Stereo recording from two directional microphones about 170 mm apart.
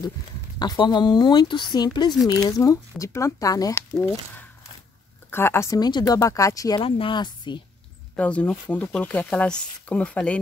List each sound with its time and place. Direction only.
0.6 s speech: 25° left (ahead or behind)
5.3 s speech: 15° left (ahead or behind)
8.2 s speech: 10° left (ahead or behind)